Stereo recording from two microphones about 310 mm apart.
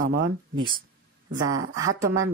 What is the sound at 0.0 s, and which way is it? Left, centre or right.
Speech, right.